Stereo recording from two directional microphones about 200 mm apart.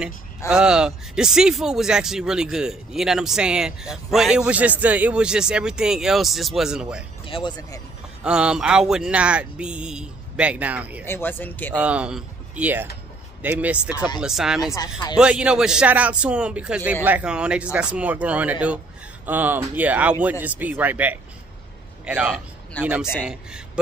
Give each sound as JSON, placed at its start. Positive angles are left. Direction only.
{"t": 0.5, "sound": "speech", "side_deg": -5}
{"t": 7.2, "sound": "speech", "side_deg": 25}
{"t": 8.2, "sound": "speech", "side_deg": -5}
{"t": 11.1, "sound": "speech", "side_deg": 10}
{"t": 11.8, "sound": "a man's voice", "side_deg": -5}
{"t": 22.8, "sound": "speech", "side_deg": 10}
{"t": 23.1, "sound": "speech", "side_deg": -5}